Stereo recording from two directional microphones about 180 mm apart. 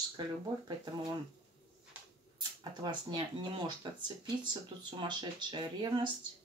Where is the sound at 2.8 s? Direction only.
25° right (ahead or behind).